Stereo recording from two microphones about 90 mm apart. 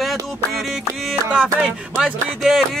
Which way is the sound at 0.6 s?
Centre (ahead or behind).